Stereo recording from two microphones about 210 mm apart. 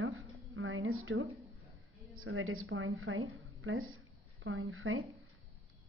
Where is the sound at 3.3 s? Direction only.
90° right.